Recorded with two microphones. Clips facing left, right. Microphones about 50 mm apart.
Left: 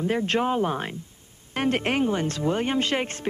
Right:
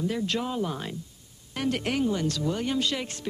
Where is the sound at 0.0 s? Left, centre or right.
Left.